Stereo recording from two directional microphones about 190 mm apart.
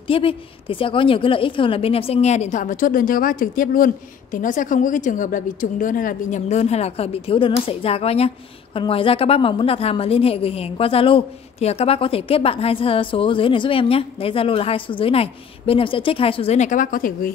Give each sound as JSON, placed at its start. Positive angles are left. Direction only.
{"t": 0.1, "sound": "a woman's voice", "side_deg": 30}